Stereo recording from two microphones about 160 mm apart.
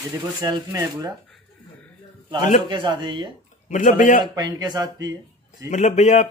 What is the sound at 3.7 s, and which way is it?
Speech, 55° left (ahead or behind).